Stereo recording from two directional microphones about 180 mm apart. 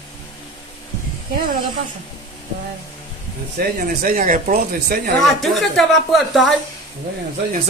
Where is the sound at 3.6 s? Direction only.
50° right (ahead or behind).